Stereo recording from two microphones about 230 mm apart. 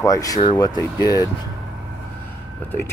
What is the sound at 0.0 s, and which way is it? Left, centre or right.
Speech, centre.